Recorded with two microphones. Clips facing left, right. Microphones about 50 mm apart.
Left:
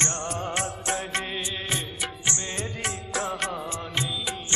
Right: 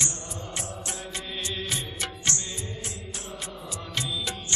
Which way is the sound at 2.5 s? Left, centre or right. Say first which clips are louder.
Left 6 dB; left.